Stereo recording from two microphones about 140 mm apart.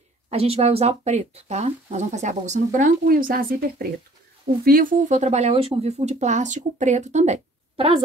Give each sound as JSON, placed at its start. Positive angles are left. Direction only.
{"t": 0.3, "sound": "speech", "side_deg": -45}
{"t": 7.7, "sound": "a woman's voice", "side_deg": -40}